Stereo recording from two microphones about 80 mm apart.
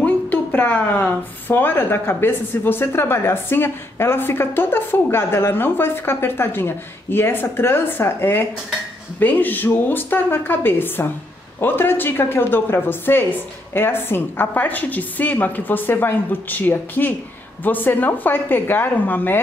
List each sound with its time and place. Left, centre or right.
0.0 s speech: left